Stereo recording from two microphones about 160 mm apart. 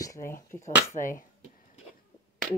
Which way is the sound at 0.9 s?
55° left (ahead or behind).